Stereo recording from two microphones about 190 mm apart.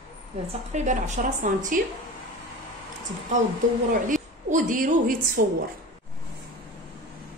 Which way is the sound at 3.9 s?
45° right (ahead or behind).